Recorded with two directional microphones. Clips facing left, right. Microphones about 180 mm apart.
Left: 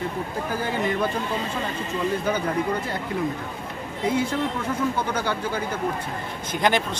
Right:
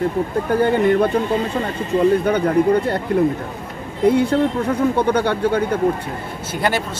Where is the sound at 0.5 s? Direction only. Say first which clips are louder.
Right 11 dB; 65° right (ahead or behind).